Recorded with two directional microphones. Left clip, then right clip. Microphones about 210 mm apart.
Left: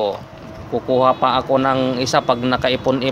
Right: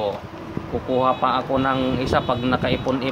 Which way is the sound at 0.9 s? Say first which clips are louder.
Left 4 dB; 40° left (ahead or behind).